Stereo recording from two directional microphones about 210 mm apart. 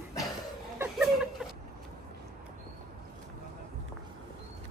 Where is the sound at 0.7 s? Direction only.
5° right (ahead or behind).